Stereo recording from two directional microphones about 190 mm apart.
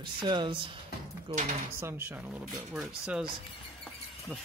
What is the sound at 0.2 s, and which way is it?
Speech, 25° right (ahead or behind).